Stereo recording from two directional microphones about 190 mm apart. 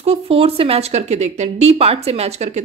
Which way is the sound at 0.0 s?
30° right (ahead or behind).